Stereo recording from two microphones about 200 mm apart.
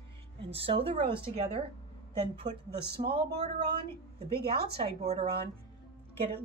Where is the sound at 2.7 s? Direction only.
50° right (ahead or behind).